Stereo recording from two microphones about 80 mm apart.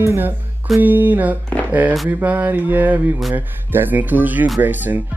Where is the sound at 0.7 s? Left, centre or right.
Right.